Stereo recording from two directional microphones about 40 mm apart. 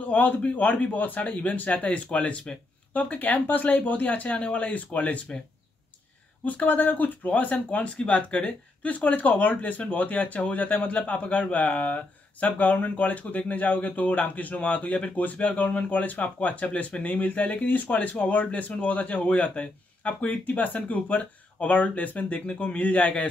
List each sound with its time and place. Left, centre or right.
0.1 s speech: left
1.8 s speech: left
6.4 s speech: left
22.5 s speech: left